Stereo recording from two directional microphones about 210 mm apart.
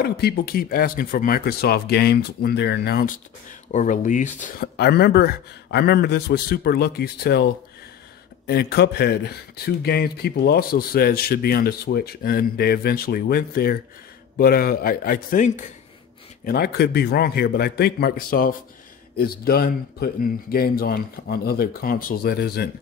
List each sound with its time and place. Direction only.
0.0 s speech: 50° left (ahead or behind)
4.7 s speech: 50° left (ahead or behind)